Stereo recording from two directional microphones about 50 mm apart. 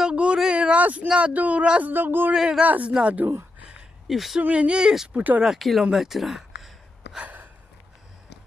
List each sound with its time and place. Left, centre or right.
0.0 s a sound: right
0.7 s a sound: right
1.0 s speech: right
1.9 s speech: right
2.3 s speech: centre
2.6 s speech: right
2.9 s speech: right
4.1 s speech: centre
4.4 s speech: right
5.1 s speech: right
5.6 s speech: centre
5.9 s a sound: centre